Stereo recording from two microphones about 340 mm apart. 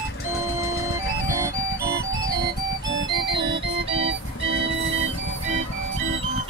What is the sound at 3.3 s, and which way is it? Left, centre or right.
Music, centre.